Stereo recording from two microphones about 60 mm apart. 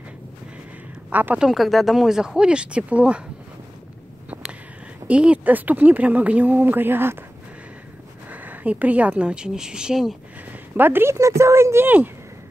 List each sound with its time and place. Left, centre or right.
1.1 s speech: right
1.4 s speech: centre; by 3.3 s right
4.3 s a sound: right
5.0 s speech: centre; by 7.2 s right
8.3 s a woman's voice: right; by 10.1 s centre
10.5 s a sound: right
11.1 s speech: right